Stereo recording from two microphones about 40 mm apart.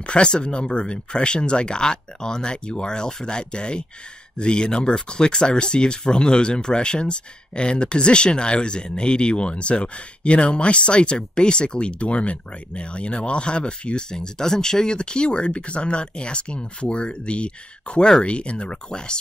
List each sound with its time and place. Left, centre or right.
0.0 s speech: left